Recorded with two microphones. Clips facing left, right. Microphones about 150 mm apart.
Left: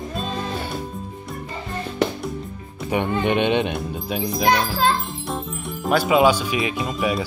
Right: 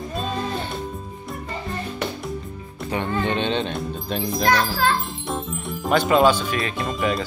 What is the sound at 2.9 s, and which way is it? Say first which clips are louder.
Speech: left 3 dB; 15° left (ahead or behind).